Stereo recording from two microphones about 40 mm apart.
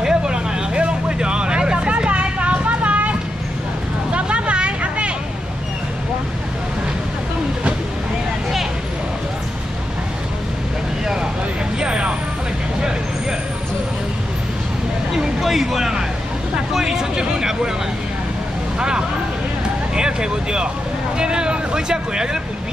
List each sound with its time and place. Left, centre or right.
0.0 s vehicle: centre
11.8 s vehicle: right
15.1 s a sound: centre
18.8 s vehicle: right
20.0 s a sound: right
21.2 s vehicle: right